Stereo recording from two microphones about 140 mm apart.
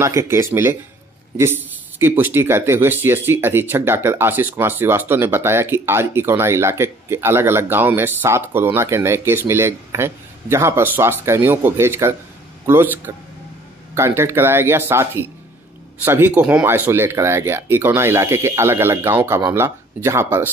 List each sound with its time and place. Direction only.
0.0 s speech: 20° right (ahead or behind)